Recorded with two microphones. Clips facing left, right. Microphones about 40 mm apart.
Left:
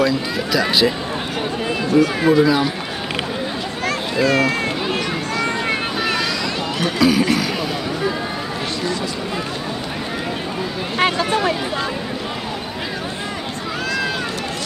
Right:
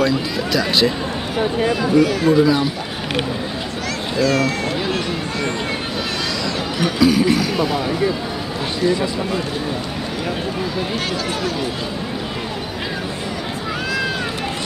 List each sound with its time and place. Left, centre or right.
0.0 s speech: centre
2.0 s speech: left
2.4 s speech: centre
4.2 s run: left
7.0 s speech: centre
11.0 s speech: left